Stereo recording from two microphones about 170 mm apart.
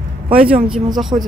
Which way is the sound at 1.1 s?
35° right (ahead or behind).